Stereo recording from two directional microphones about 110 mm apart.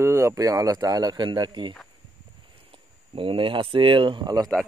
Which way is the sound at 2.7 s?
50° right (ahead or behind).